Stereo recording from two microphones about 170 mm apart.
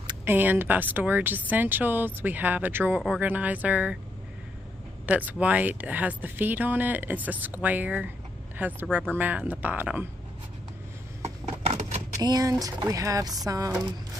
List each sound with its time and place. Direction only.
0.2 s speech: 10° right (ahead or behind)
5.0 s speech: 10° right (ahead or behind)
11.2 s a sound: 40° right (ahead or behind)
12.2 s speech: 20° right (ahead or behind)